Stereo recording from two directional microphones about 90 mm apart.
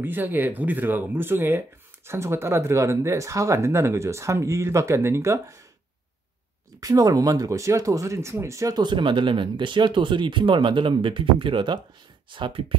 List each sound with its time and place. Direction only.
0.0 s speech: 20° right (ahead or behind)
6.8 s speech: 40° right (ahead or behind)
8.7 s speech: 60° right (ahead or behind)